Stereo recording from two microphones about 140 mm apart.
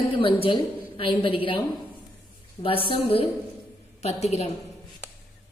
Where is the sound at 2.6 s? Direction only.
40° left (ahead or behind).